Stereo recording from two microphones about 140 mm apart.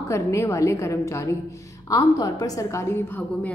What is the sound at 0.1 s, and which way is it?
A woman's voice, 20° left (ahead or behind).